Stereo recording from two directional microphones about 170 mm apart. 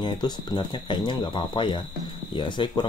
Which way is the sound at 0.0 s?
25° left (ahead or behind).